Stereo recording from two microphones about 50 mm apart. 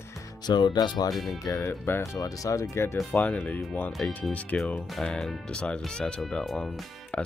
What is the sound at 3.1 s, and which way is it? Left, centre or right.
Speech, left.